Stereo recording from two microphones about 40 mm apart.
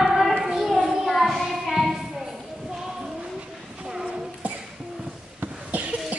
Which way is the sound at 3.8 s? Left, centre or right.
Centre.